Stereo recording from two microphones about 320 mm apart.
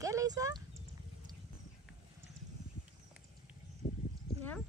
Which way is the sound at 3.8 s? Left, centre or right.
Left.